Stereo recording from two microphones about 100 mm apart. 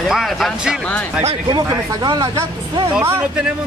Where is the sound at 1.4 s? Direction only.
45° right (ahead or behind).